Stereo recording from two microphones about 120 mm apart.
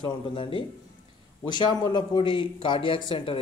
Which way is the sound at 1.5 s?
35° left (ahead or behind).